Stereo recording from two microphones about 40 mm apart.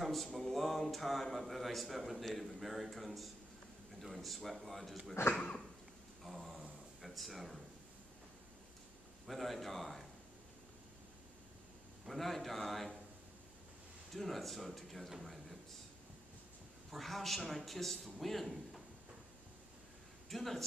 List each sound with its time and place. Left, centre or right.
0.0 s speech: centre
5.3 s a sound: left
6.2 s a sound: centre
7.0 s speech: centre
9.3 s speech: centre
12.1 s speech: centre
14.1 s speech: centre
16.9 s speech: centre
20.2 s speech: centre